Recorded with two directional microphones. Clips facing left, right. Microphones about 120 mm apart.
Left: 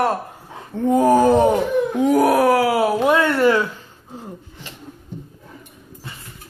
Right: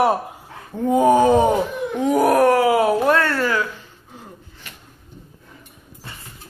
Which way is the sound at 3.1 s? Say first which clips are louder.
Left 3 dB; 15° left (ahead or behind).